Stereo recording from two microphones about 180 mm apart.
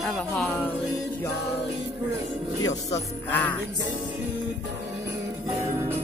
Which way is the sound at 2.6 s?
20° left (ahead or behind).